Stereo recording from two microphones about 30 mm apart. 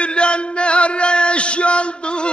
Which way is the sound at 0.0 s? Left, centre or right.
Left.